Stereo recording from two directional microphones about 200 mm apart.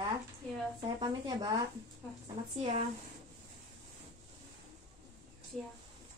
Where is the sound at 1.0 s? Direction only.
20° right (ahead or behind).